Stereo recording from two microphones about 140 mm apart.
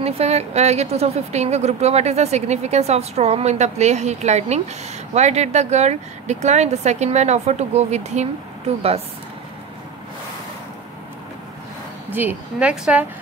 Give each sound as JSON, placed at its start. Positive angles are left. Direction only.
{"t": 0.0, "sound": "speech", "side_deg": -50}
{"t": 12.1, "sound": "a woman's voice", "side_deg": -15}